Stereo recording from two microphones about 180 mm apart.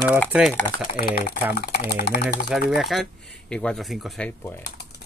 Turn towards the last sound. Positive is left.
turn(degrees=10)  # may be behind; listen again after turning